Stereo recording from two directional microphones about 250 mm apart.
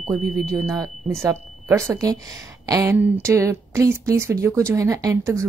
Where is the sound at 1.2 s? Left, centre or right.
Centre.